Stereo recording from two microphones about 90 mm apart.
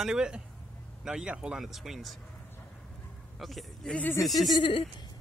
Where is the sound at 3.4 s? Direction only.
Centre (ahead or behind).